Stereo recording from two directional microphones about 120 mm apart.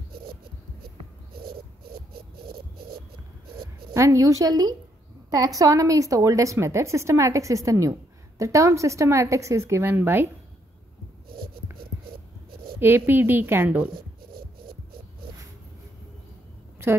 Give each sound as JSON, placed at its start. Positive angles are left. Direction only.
{"t": 3.9, "sound": "a woman's voice", "side_deg": -25}
{"t": 12.7, "sound": "a woman's voice", "side_deg": -20}